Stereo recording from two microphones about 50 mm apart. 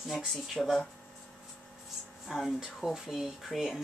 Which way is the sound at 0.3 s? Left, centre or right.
Centre.